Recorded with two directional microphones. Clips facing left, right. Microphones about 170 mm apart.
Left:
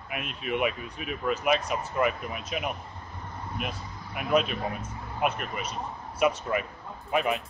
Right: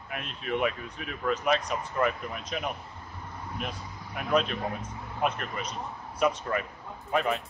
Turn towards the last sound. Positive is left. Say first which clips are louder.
# left 1 dB
turn(degrees=15)  # may be behind; listen again after turning